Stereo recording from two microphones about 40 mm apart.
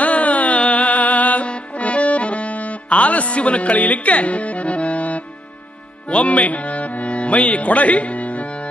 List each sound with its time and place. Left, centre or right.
0.0 s music: left